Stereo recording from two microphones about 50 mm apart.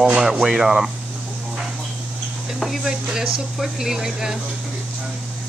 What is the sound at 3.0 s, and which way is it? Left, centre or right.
Speech, centre.